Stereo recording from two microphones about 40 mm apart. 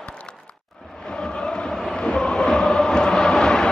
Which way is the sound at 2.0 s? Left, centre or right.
Left.